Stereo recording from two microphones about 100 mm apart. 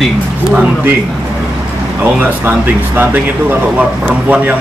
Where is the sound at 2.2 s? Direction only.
15° right (ahead or behind).